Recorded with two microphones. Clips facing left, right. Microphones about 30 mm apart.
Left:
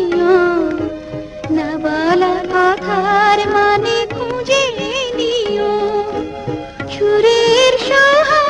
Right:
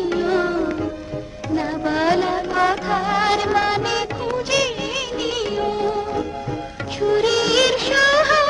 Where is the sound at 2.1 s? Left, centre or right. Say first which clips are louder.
Left 6 dB; centre.